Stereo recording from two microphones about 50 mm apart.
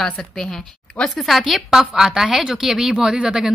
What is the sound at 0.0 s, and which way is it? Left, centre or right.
Speech, centre.